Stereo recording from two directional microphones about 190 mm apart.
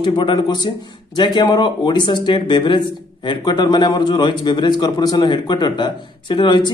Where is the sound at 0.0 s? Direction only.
25° left (ahead or behind).